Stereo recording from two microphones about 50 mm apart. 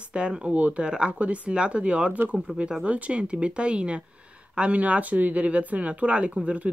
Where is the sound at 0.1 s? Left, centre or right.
Centre.